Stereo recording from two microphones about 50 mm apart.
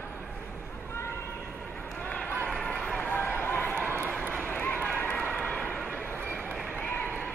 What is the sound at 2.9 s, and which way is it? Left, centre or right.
Run, left.